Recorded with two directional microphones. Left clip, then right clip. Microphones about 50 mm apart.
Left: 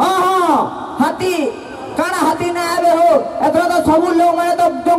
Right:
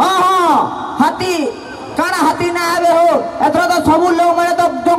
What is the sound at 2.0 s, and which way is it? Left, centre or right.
A woman's voice, right.